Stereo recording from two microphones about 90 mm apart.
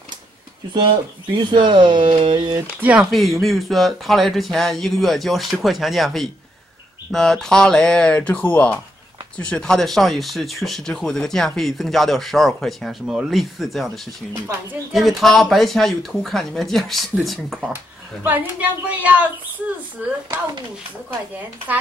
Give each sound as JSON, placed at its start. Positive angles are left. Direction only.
{"t": 1.3, "sound": "speech", "side_deg": -65}
{"t": 2.5, "sound": "a woman's voice", "side_deg": -20}
{"t": 3.0, "sound": "speech", "side_deg": 0}
{"t": 13.0, "sound": "speech", "side_deg": -10}
{"t": 18.2, "sound": "a woman's voice", "side_deg": -20}